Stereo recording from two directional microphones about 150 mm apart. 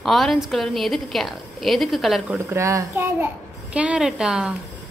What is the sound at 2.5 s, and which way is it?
A woman's voice, 20° right (ahead or behind).